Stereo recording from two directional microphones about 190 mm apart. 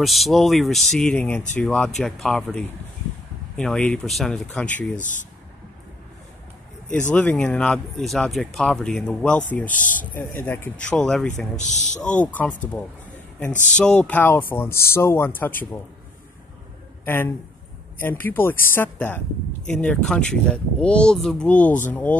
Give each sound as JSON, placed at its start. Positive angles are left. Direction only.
{"t": 0.0, "sound": "speech", "side_deg": 0}
{"t": 4.9, "sound": "speech", "side_deg": 40}
{"t": 7.1, "sound": "speech", "side_deg": 5}
{"t": 9.7, "sound": "speech", "side_deg": 45}
{"t": 10.0, "sound": "speech", "side_deg": 10}
{"t": 11.5, "sound": "speech", "side_deg": 40}
{"t": 12.0, "sound": "speech", "side_deg": 5}
{"t": 17.0, "sound": "a man's voice", "side_deg": 10}